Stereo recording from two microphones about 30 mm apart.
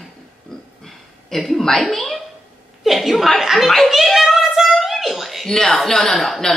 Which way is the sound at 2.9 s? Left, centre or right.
Centre.